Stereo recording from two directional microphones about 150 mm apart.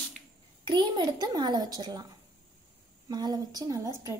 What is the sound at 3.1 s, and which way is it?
A child's voice, 30° right (ahead or behind).